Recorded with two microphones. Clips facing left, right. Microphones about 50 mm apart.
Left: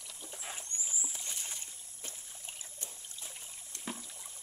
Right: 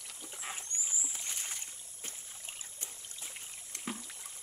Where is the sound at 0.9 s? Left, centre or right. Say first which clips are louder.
Even; centre.